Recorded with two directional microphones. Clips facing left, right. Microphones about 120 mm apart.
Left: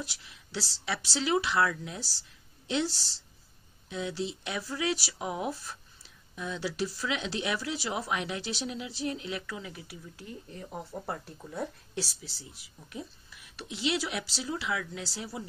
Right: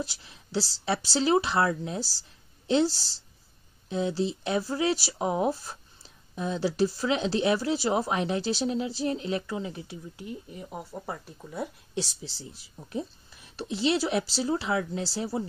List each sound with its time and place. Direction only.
0.0 s a woman's voice: 30° right (ahead or behind); by 11.7 s 5° right (ahead or behind)
11.9 s speech: 25° right (ahead or behind)